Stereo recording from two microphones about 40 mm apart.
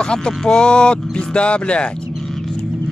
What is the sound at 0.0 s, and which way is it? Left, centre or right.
Speech, centre.